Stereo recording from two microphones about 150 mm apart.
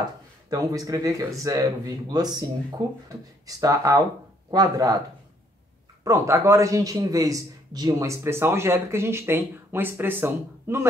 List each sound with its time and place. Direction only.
0.5 s speech: 25° right (ahead or behind)
6.0 s a man's voice: 20° right (ahead or behind)